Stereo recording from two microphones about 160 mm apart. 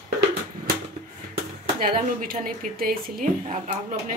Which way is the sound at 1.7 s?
65° right (ahead or behind).